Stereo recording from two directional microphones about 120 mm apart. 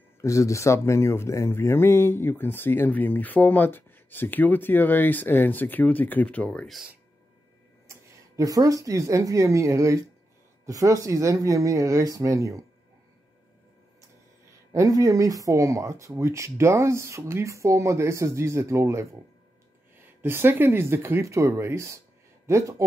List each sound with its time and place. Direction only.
0.2 s speech: 25° left (ahead or behind); by 6.8 s 10° left (ahead or behind)
7.9 s speech: 30° right (ahead or behind)
14.7 s speech: 30° right (ahead or behind)